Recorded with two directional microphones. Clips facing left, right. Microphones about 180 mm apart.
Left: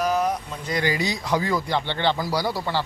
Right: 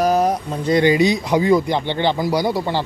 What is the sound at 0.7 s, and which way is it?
Speech, 25° right (ahead or behind).